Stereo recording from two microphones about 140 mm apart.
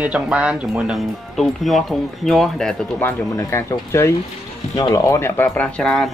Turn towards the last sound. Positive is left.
turn(degrees=5)  # may be behind; listen again after turning